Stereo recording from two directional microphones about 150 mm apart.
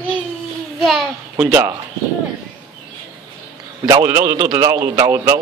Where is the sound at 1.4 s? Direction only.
15° right (ahead or behind).